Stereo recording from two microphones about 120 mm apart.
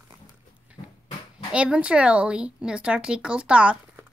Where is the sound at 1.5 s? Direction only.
10° right (ahead or behind).